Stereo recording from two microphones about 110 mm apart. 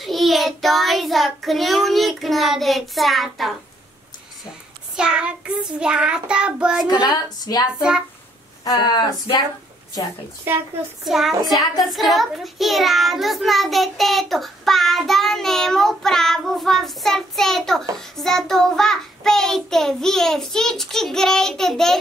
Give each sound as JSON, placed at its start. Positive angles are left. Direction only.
{"t": 0.0, "sound": "child singing", "side_deg": 0}
{"t": 4.9, "sound": "child singing", "side_deg": -10}
{"t": 6.9, "sound": "a woman's voice", "side_deg": 40}
{"t": 11.1, "sound": "a child's voice", "side_deg": 0}